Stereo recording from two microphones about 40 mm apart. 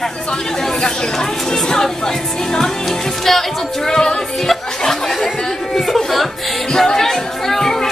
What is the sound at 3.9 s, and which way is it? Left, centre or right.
Speech, centre.